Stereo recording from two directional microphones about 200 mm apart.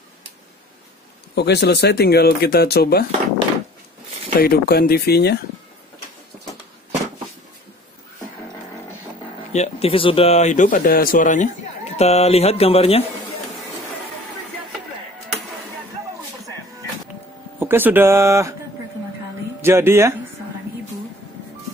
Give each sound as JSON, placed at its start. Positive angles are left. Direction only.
{"t": 1.3, "sound": "speech", "side_deg": 55}
{"t": 4.4, "sound": "speech", "side_deg": 50}
{"t": 9.5, "sound": "speech", "side_deg": 30}
{"t": 17.6, "sound": "speech", "side_deg": -10}
{"t": 19.6, "sound": "speech", "side_deg": -10}